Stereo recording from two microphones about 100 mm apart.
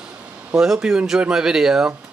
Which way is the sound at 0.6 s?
5° right (ahead or behind).